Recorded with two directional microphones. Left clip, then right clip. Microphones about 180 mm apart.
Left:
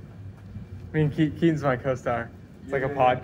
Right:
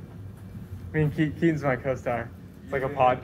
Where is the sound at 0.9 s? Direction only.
10° left (ahead or behind).